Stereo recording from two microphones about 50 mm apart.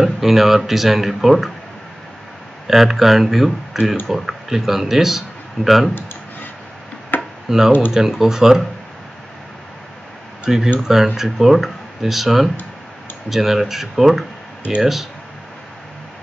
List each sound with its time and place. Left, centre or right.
0.0 s speech: centre
2.6 s speech: centre
7.1 s chop: left
7.4 s speech: centre
10.4 s speech: centre